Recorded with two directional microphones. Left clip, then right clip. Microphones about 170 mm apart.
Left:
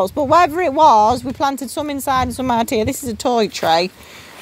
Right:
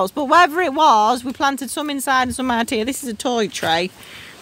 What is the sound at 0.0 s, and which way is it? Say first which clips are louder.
Speech: left 1 dB; 25° right (ahead or behind).